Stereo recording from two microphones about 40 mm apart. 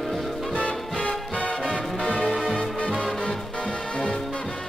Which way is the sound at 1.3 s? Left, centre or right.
Left.